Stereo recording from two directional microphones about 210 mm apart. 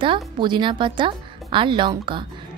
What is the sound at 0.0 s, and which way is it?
Speech, 25° right (ahead or behind).